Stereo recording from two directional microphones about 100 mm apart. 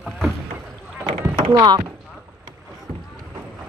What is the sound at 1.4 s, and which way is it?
Speech, 45° right (ahead or behind).